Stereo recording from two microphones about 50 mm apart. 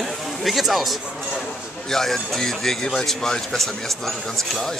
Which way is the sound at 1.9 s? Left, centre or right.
Centre.